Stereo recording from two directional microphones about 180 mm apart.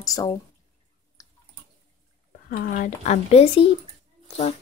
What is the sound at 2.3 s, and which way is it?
Speech, 55° left (ahead or behind).